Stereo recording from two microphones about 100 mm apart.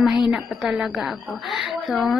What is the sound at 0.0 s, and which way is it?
Speech, 5° right (ahead or behind).